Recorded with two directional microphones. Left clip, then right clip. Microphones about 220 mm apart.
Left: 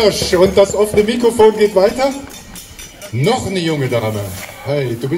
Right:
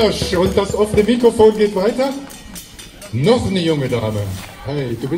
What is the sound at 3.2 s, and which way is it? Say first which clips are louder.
A man's voice: right 1 dB; 50° left (ahead or behind).